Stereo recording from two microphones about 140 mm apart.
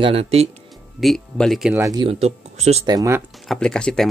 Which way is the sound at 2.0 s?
45° right (ahead or behind).